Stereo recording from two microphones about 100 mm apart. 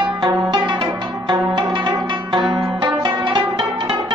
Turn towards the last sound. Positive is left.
turn(degrees=-55)  # may be behind; listen again after turning